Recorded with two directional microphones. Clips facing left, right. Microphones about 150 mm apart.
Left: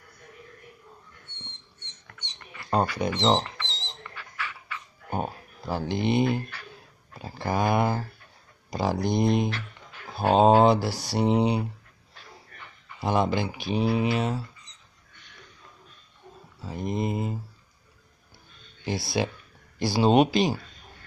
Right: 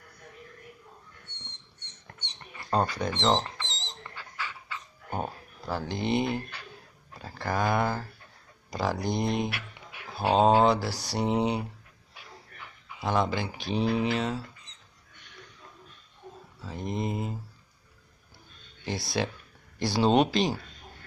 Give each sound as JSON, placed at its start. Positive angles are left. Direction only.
{"t": 2.0, "sound": "a sound", "side_deg": -30}
{"t": 3.0, "sound": "speech", "side_deg": 15}
{"t": 3.6, "sound": "dog", "side_deg": -45}
{"t": 5.1, "sound": "a sound", "side_deg": 15}
{"t": 7.2, "sound": "speech", "side_deg": 15}
{"t": 9.5, "sound": "a sound", "side_deg": -10}
{"t": 10.4, "sound": "speech", "side_deg": 20}
{"t": 12.1, "sound": "dog", "side_deg": -5}
{"t": 13.0, "sound": "speech", "side_deg": 15}
{"t": 16.6, "sound": "speech", "side_deg": 5}
{"t": 18.9, "sound": "speech", "side_deg": 5}